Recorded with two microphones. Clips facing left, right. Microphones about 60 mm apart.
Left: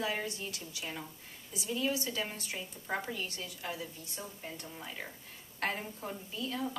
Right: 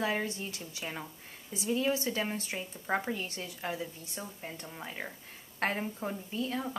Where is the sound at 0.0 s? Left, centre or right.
Right.